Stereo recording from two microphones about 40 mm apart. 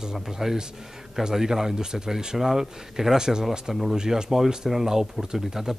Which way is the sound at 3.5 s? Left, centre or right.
Centre.